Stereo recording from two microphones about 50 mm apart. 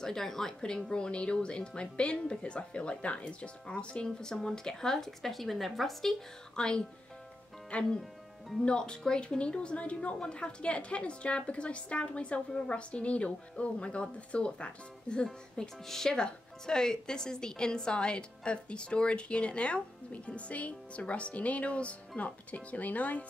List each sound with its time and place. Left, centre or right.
0.0 s speech: centre
6.5 s speech: centre
8.0 s music: centre
8.6 s a woman's voice: centre